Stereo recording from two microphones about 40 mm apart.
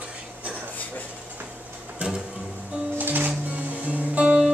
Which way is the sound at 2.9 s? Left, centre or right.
Right.